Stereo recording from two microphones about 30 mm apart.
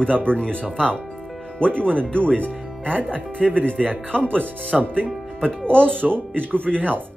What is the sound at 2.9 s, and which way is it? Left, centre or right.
Speech, right.